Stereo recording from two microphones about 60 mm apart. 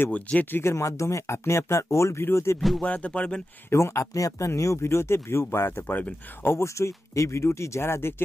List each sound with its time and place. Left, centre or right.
0.1 s music: left
0.5 s speech: left
2.8 s music: left
3.7 s speech: left
6.4 s speech: left